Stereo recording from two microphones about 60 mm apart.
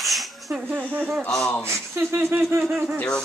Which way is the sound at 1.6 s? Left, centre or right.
Right.